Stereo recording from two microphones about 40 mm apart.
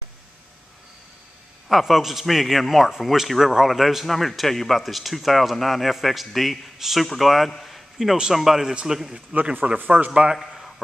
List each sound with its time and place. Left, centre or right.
1.7 s a man's voice: centre
9.3 s speech: right
10.3 s a sound: centre